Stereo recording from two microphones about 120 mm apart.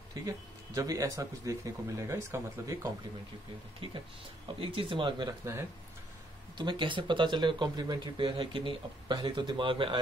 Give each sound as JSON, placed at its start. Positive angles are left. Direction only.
{"t": 0.7, "sound": "speech", "side_deg": -30}
{"t": 4.6, "sound": "speech", "side_deg": -45}
{"t": 5.4, "sound": "speech", "side_deg": -20}
{"t": 6.6, "sound": "speech", "side_deg": -40}